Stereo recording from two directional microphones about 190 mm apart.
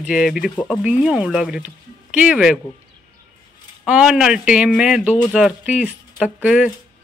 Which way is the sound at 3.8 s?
5° right (ahead or behind).